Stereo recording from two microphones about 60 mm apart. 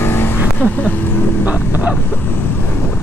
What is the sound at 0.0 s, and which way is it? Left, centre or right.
Vehicle, left.